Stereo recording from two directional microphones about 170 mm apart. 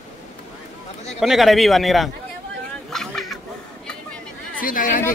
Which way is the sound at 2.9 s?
Centre (ahead or behind).